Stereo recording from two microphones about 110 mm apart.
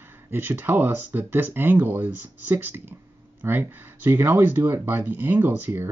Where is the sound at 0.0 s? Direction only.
20° right (ahead or behind).